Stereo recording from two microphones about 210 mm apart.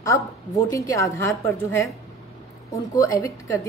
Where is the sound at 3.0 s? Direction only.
15° left (ahead or behind).